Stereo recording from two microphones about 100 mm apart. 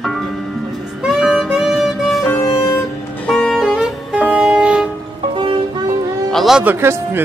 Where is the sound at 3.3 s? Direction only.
5° left (ahead or behind).